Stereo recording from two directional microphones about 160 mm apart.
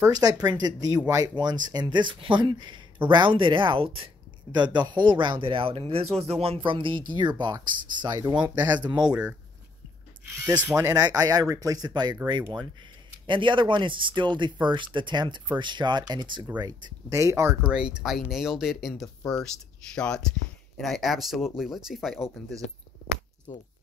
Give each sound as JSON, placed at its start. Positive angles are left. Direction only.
{"t": 0.0, "sound": "speech", "side_deg": -20}
{"t": 9.0, "sound": "speech", "side_deg": -5}
{"t": 10.6, "sound": "speech", "side_deg": -15}
{"t": 17.6, "sound": "speech", "side_deg": -5}
{"t": 23.5, "sound": "speech", "side_deg": 20}